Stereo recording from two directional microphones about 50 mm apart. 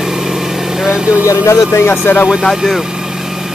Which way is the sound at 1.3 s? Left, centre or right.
Left.